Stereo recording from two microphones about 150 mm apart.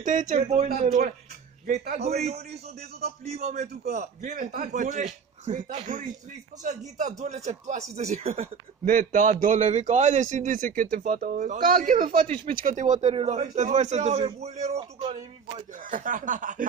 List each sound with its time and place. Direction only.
0.0 s a man's voice: 60° right (ahead or behind)
8.8 s a man's voice: 60° right (ahead or behind); by 11.3 s 75° right (ahead or behind)
11.3 s a man's voice: 60° right (ahead or behind); by 15.1 s 40° right (ahead or behind)
15.8 s a man's voice: 60° right (ahead or behind)